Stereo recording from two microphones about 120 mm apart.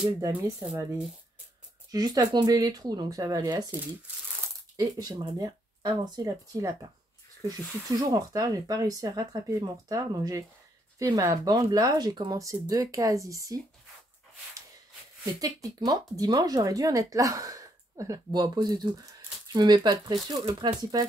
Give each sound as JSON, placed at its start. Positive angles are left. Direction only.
{"t": 0.0, "sound": "speech", "side_deg": -35}
{"t": 1.9, "sound": "speech", "side_deg": -35}
{"t": 4.7, "sound": "speech", "side_deg": -30}
{"t": 8.1, "sound": "speech", "side_deg": -30}
{"t": 15.4, "sound": "speech", "side_deg": -30}